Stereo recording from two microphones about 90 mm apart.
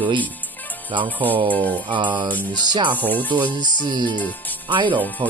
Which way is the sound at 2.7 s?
60° right (ahead or behind).